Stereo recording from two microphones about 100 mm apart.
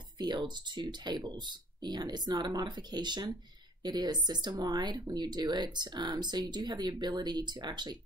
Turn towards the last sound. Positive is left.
turn(degrees=-45)  # may be behind; listen again after turning